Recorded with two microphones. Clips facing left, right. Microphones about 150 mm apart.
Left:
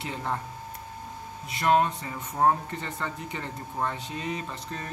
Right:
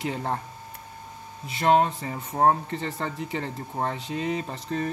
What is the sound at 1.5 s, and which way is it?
Speech, 30° right (ahead or behind).